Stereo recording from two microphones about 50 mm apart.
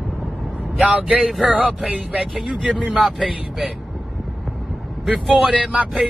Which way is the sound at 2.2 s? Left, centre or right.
Centre.